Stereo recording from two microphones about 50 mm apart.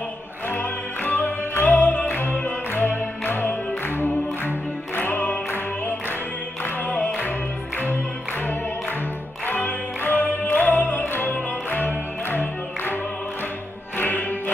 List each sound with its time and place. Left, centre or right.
0.5 s music: left